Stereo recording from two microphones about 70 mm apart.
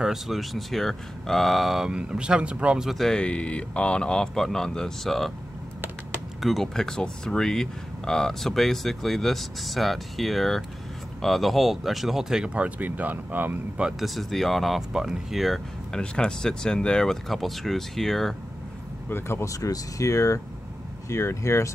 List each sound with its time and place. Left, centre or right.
0.0 s speech: centre
1.9 s speech: centre
2.9 s speech: centre
3.2 s speech: centre
6.4 s speech: centre
12.5 s speech: right
13.7 s speech: centre
14.0 s speech: centre
16.0 s speech: centre
19.0 s speech: left
19.4 s speech: left